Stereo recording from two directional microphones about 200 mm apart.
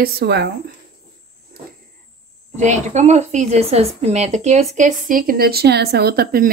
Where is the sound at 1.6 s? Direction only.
50° right (ahead or behind).